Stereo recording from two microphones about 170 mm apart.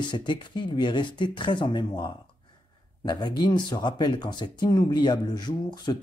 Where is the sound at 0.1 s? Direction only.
25° left (ahead or behind).